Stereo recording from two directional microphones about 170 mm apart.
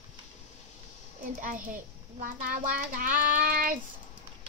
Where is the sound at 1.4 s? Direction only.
55° right (ahead or behind).